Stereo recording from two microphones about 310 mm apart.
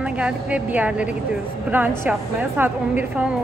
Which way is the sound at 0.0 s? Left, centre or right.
Centre.